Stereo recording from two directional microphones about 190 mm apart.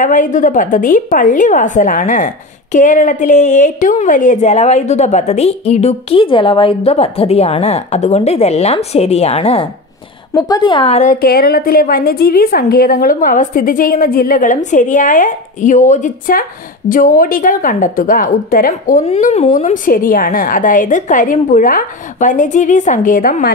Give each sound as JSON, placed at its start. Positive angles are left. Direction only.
{"t": 0.0, "sound": "a woman's voice", "side_deg": 45}
{"t": 10.3, "sound": "a woman's voice", "side_deg": 20}
{"t": 11.0, "sound": "a woman's voice", "side_deg": 45}